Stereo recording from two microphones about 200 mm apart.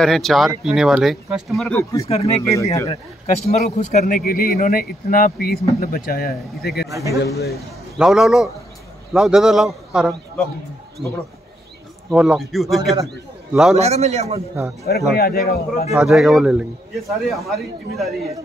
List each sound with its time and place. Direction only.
0.0 s a man's voice: centre (ahead or behind)
2.0 s speech: 30° left (ahead or behind)
2.4 s speech: 15° left (ahead or behind)
2.9 s speech: 35° left (ahead or behind); by 6.9 s 50° left (ahead or behind)
6.9 s a man's voice: 15° right (ahead or behind)
7.5 s a man's voice: centre (ahead or behind)
13.7 s a man's voice: 30° right (ahead or behind)
14.9 s speech: 50° left (ahead or behind)
15.9 s a man's voice: centre (ahead or behind)